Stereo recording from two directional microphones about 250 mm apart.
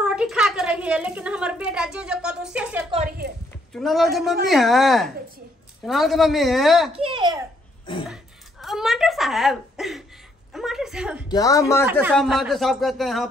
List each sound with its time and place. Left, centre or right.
0.0 s a woman's voice: centre
6.9 s a child's voice: right
8.1 s a sound: centre
10.5 s a woman's voice: centre
11.2 s speech: centre
11.8 s a woman's voice: centre